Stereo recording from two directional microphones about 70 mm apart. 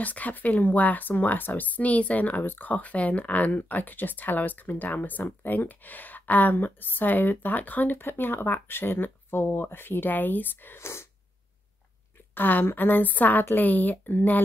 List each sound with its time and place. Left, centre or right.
0.0 s speech: left
12.4 s speech: left